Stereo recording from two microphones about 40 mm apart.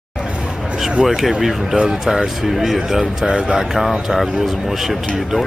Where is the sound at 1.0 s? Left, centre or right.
Centre.